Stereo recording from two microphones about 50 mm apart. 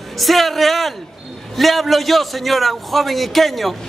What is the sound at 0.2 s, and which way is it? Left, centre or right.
A man's voice, centre.